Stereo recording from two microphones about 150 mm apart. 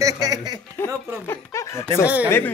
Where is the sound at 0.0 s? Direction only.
25° right (ahead or behind).